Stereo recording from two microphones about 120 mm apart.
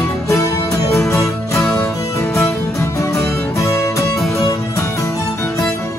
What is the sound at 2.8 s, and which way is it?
Music, 25° left (ahead or behind).